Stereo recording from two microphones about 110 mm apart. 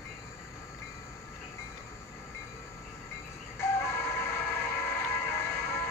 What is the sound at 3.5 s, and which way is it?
Train, 20° left (ahead or behind).